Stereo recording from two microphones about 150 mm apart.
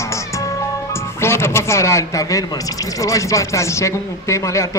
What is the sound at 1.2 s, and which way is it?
A man's voice, 15° left (ahead or behind).